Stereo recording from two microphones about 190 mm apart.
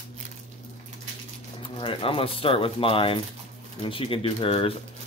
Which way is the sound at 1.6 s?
25° left (ahead or behind).